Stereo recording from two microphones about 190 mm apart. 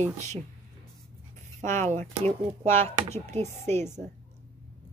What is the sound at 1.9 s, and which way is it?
Speech, 40° right (ahead or behind).